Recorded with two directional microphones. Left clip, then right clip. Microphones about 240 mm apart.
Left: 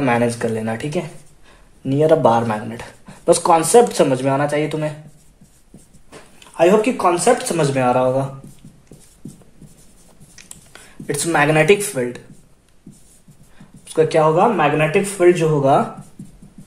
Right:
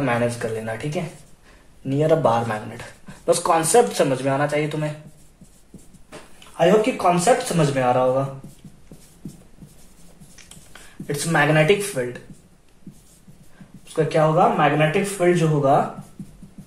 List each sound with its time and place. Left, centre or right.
0.0 s speech: left
6.5 s speech: left
10.3 s speech: left
13.9 s speech: left